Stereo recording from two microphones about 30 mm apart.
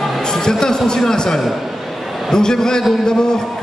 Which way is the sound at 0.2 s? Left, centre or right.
Left.